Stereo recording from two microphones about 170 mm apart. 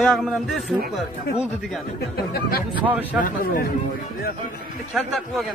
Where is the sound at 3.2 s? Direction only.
55° left (ahead or behind).